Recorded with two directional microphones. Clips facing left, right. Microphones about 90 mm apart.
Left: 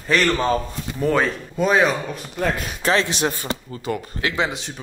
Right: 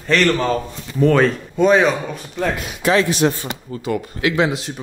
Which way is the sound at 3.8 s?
5° right (ahead or behind).